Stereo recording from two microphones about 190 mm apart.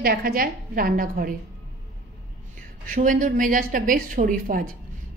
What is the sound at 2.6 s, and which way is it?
A woman's voice, 45° right (ahead or behind).